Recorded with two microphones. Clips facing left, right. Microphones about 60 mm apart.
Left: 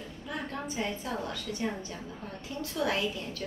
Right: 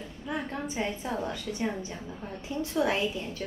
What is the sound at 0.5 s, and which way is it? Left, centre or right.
A woman's voice, right.